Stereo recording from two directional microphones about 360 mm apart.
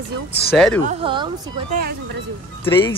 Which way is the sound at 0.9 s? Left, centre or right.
Centre.